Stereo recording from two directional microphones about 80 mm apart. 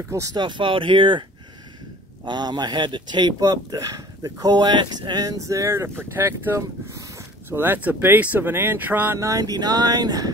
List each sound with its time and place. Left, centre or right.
0.3 s speech: right
2.2 s speech: right
5.2 s speech: right
6.9 s a sound: right
7.4 s speech: right
9.1 s speech: right